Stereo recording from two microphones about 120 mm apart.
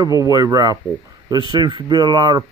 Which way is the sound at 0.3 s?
30° right (ahead or behind).